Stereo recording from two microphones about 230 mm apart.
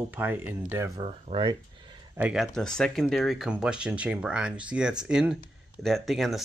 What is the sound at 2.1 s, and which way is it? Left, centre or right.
Speech, centre.